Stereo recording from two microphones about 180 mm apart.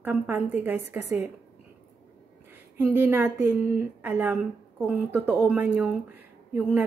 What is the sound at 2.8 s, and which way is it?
A woman's voice, 10° right (ahead or behind).